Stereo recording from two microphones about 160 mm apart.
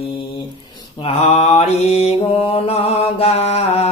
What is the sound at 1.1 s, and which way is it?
Mantra, 35° left (ahead or behind).